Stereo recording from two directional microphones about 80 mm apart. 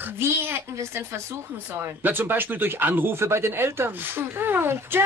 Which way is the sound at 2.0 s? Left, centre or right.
Right.